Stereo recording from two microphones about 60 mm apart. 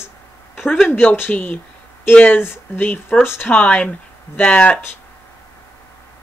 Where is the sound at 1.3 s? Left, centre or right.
Left.